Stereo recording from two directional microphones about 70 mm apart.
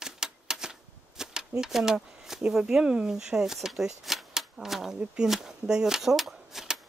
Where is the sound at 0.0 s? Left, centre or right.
Centre.